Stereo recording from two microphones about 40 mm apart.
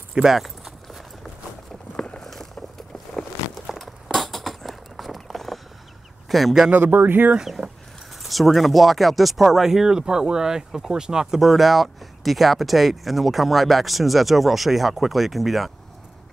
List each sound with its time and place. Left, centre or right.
0.1 s speech: centre
2.0 s a sound: centre
3.2 s a sound: centre
6.2 s a man's voice: centre
6.7 s speech: right
7.3 s speech: centre